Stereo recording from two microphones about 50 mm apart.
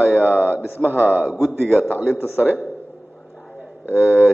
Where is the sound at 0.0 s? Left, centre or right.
Right.